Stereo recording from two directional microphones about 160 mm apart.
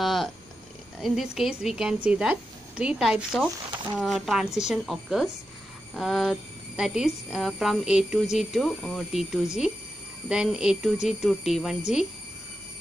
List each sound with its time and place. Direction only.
0.0 s cat: centre (ahead or behind)
1.0 s speech: centre (ahead or behind)